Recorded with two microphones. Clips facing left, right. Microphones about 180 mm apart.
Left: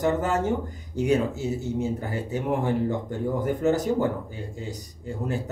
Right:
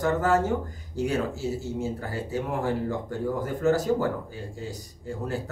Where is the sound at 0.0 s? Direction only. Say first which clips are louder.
Even; 20° left (ahead or behind).